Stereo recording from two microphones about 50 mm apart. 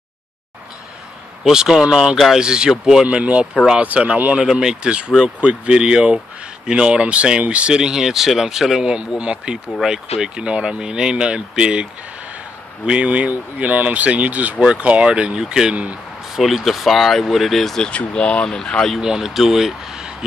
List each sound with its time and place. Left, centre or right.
1.4 s speech: centre
2.1 s speech: centre
2.4 s speech: centre
3.1 s speech: right
4.4 s speech: centre
9.2 s speech: centre
15.7 s speech: right
16.3 s speech: centre
17.8 s speech: centre
18.9 s speech: centre